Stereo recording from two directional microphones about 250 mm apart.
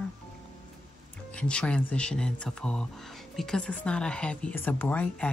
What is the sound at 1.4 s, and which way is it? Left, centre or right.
Speech, centre.